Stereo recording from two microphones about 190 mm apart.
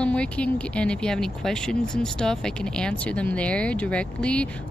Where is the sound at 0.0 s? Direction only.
5° left (ahead or behind).